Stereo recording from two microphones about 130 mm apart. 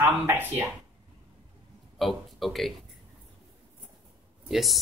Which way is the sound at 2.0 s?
Centre (ahead or behind).